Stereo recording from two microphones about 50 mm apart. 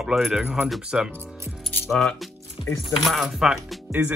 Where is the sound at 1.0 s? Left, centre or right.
Right.